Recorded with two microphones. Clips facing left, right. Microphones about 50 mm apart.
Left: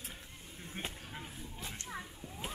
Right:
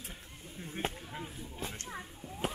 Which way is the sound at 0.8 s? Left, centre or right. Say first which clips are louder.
Right 8 dB; right.